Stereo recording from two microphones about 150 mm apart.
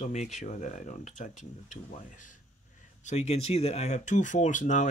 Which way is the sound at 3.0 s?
45° left (ahead or behind).